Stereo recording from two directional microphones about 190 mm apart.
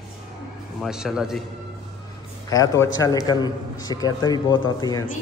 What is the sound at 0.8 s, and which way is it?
Speech, centre (ahead or behind).